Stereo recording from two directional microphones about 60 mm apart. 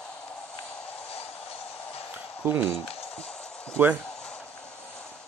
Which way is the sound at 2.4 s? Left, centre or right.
Right.